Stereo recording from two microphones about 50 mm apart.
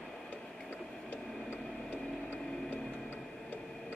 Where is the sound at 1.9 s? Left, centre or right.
Centre.